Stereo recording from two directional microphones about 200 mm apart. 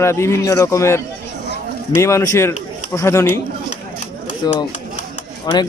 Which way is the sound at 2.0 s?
15° left (ahead or behind).